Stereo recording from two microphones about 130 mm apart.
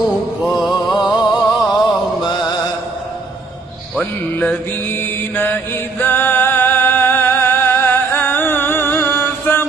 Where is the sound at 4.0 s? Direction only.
15° left (ahead or behind).